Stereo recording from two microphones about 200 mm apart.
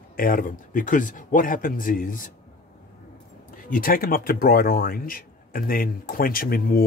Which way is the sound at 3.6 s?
45° left (ahead or behind).